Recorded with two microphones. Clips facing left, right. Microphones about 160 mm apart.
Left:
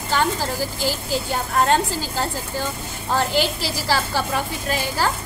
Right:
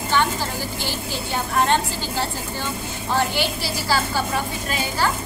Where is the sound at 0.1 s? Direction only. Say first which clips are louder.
Left 1 dB; 40° left (ahead or behind).